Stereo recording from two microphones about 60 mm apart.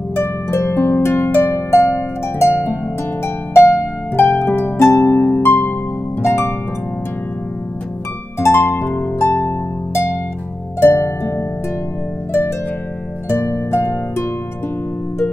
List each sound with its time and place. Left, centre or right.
0.1 s harp: left
2.5 s harp: left
4.1 s harp: left
5.5 s harp: left
6.2 s harp: left
8.4 s harp: left